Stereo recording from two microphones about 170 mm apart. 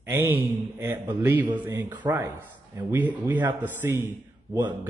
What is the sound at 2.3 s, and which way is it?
Speech, 10° right (ahead or behind).